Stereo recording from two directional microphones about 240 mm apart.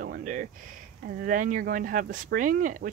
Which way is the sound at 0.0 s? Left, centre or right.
Right.